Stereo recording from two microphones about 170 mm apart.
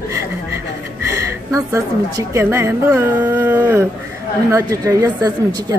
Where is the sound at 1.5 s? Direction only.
20° right (ahead or behind).